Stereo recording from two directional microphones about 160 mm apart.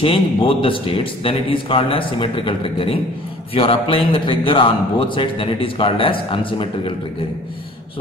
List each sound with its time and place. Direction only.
0.0 s a man's voice: 35° left (ahead or behind)